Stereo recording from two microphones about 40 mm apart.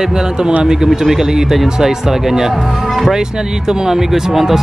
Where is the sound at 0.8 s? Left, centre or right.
Centre.